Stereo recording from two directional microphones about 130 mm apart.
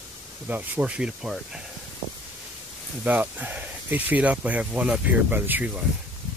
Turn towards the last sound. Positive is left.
turn(degrees=-10)  # may be behind; listen again after turning